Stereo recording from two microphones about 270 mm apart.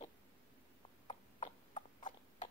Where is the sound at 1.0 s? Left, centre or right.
Centre.